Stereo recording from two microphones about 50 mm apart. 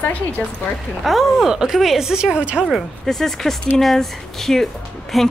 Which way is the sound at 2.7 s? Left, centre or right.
Centre.